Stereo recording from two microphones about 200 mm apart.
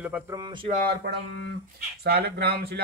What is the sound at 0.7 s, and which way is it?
Speech, 45° right (ahead or behind).